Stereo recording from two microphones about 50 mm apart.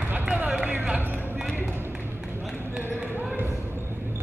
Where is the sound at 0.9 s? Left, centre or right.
Right.